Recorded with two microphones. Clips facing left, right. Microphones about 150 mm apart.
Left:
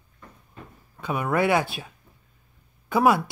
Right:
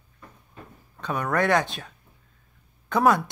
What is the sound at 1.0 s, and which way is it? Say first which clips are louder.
Speech: left 1 dB; 5° left (ahead or behind).